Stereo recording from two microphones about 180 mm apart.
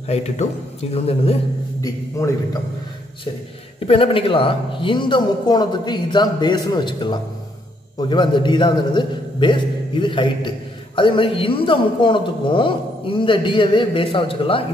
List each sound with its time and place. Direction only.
0.0 s a man's voice: 35° left (ahead or behind)
1.8 s a man's voice: 20° left (ahead or behind)
3.8 s a man's voice: 30° left (ahead or behind)